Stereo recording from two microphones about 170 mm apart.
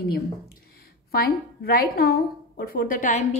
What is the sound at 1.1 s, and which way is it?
A woman's voice, 60° left (ahead or behind).